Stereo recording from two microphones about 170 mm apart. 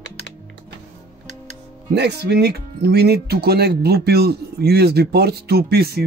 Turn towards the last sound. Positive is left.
turn(degrees=-70)  # may be behind; listen again after turning